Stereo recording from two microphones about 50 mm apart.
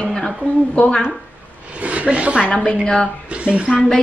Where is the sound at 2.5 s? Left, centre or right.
Centre.